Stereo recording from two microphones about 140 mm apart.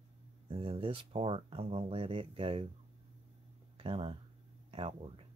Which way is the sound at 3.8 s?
40° right (ahead or behind).